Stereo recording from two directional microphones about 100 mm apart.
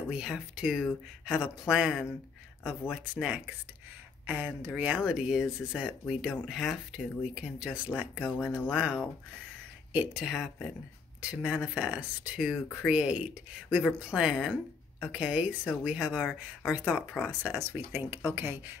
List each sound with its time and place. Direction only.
0.1 s speech: 10° right (ahead or behind)